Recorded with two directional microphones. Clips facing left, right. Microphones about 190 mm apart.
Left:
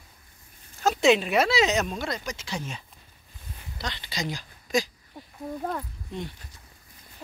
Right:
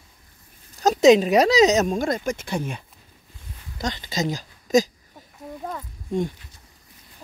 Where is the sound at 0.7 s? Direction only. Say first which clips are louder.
Right 6 dB; 40° right (ahead or behind).